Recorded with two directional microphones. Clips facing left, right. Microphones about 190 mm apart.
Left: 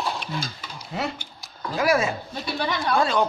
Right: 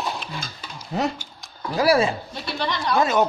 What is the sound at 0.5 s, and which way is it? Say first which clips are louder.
Stir: right 4 dB; 40° right (ahead or behind).